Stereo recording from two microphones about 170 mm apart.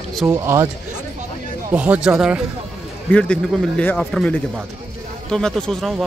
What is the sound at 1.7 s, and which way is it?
Speech, 5° right (ahead or behind).